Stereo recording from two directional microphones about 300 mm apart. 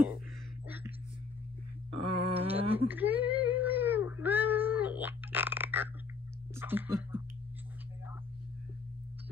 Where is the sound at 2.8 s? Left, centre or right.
Centre.